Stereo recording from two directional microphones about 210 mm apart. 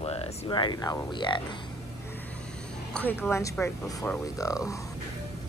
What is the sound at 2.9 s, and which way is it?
A woman's voice, 5° left (ahead or behind).